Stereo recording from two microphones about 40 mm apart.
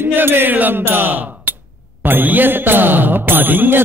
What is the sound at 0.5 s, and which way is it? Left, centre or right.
Speech, right.